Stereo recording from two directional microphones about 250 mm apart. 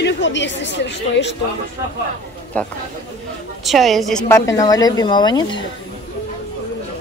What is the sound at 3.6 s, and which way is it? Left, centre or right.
Speech, centre.